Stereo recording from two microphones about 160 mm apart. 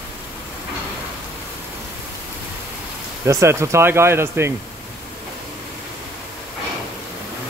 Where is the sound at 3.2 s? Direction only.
15° right (ahead or behind).